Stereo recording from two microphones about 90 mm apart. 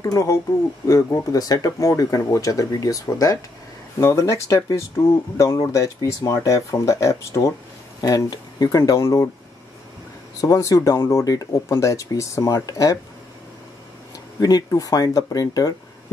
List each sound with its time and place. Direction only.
0.0 s speech: 35° left (ahead or behind)
10.4 s speech: 35° left (ahead or behind)
14.4 s speech: 40° left (ahead or behind)